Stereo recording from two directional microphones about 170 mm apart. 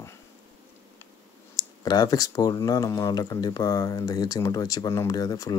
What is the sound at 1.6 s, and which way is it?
Speech, 20° left (ahead or behind).